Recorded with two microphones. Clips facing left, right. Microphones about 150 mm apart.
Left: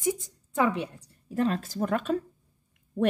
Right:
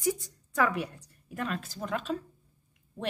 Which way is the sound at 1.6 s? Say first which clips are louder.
Left 6 dB; 50° left (ahead or behind).